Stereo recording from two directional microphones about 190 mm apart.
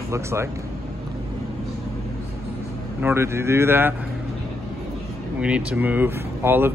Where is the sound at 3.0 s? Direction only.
10° right (ahead or behind).